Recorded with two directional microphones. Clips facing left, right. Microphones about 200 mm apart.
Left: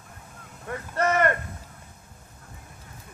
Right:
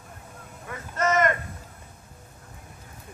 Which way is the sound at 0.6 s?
60° left (ahead or behind).